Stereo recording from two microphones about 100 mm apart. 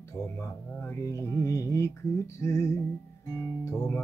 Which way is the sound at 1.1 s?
30° left (ahead or behind).